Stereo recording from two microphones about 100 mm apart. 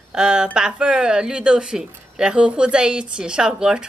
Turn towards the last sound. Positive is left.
turn(degrees=-10)  # may be behind; listen again after turning